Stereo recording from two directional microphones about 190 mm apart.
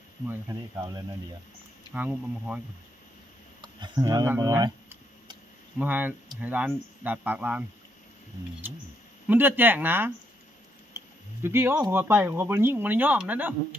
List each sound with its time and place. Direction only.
0.3 s speech: 15° right (ahead or behind)
2.0 s speech: 10° right (ahead or behind)
3.6 s speech: 25° right (ahead or behind)
5.8 s speech: 10° right (ahead or behind)
9.3 s speech: 10° right (ahead or behind)
11.4 s speech: 10° right (ahead or behind)